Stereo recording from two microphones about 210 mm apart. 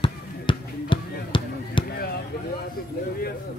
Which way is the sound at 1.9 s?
50° left (ahead or behind).